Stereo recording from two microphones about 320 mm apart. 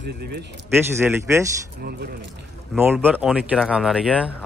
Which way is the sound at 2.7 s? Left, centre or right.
Centre.